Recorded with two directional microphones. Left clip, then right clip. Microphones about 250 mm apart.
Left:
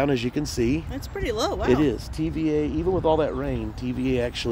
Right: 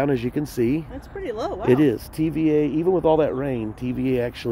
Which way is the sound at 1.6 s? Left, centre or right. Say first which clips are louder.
Right 6 dB; centre.